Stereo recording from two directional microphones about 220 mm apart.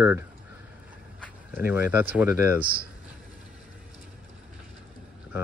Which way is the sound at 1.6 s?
10° right (ahead or behind).